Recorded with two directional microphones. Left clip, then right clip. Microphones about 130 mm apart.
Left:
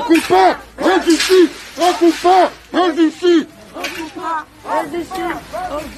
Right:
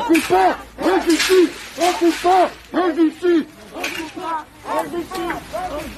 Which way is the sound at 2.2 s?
55° left (ahead or behind).